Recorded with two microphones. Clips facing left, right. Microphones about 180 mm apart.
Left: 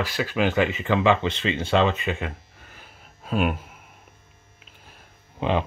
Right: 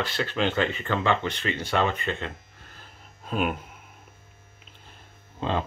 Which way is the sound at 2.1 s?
10° left (ahead or behind).